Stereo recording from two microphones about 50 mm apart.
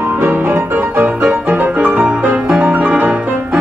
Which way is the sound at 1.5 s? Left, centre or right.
Right.